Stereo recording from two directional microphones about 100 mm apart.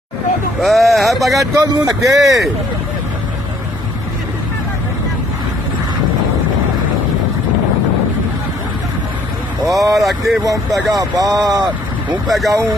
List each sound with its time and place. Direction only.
0.6 s speech: centre (ahead or behind)
1.6 s speech: 40° right (ahead or behind)
9.7 s vehicle: 35° right (ahead or behind)
9.9 s speech: centre (ahead or behind)
10.4 s speech: 35° right (ahead or behind)
12.3 s speech: centre (ahead or behind)